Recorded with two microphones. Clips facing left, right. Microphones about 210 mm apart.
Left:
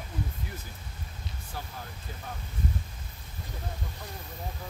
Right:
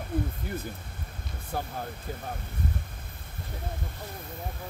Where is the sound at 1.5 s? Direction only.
55° right (ahead or behind).